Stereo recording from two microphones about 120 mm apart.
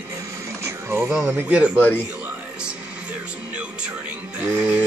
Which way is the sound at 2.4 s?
10° right (ahead or behind).